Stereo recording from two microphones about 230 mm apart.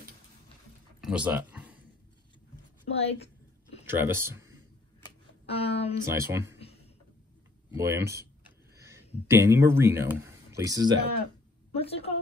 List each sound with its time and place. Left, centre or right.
1.0 s a sound: centre
2.9 s a woman's voice: left
3.8 s speech: centre
5.0 s music: left
6.0 s speech: centre
7.7 s speech: centre
8.7 s a sound: centre
9.3 s speech: centre
11.8 s a woman's voice: left